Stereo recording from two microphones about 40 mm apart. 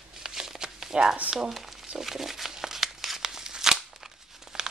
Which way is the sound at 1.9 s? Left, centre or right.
Centre.